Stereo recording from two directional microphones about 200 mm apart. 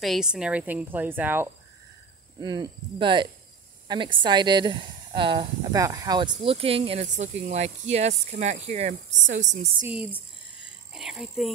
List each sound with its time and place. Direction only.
0.0 s a woman's voice: centre (ahead or behind)
2.4 s speech: 20° right (ahead or behind); by 9.7 s 35° right (ahead or behind)
10.9 s speech: centre (ahead or behind)